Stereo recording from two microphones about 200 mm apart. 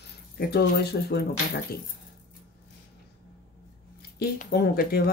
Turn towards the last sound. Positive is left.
turn(degrees=50)  # may be behind; listen again after turning